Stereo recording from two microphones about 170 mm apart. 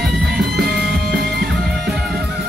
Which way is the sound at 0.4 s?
70° right (ahead or behind).